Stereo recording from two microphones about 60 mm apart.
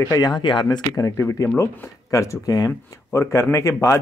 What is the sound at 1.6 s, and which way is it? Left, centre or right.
Speech, left.